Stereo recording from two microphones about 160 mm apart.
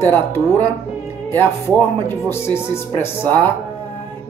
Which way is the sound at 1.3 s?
15° left (ahead or behind).